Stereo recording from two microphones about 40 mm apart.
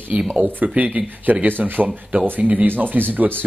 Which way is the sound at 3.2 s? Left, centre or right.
Right.